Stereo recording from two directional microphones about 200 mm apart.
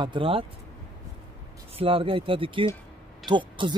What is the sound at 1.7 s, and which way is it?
Speech, 25° right (ahead or behind).